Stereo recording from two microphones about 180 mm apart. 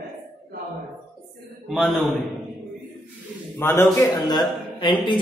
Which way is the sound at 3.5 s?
10° left (ahead or behind).